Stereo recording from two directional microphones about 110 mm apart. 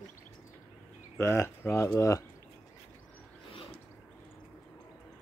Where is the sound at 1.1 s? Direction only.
25° left (ahead or behind).